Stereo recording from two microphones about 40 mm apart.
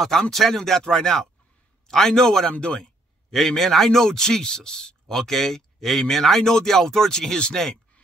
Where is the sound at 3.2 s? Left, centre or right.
Centre.